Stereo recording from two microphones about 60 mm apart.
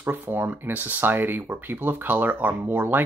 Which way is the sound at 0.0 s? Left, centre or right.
Right.